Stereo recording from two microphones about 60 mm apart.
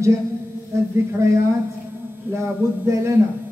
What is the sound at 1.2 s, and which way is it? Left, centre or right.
A man's voice, right.